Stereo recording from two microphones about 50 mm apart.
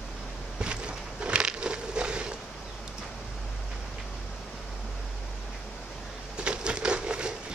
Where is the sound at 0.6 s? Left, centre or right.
Centre.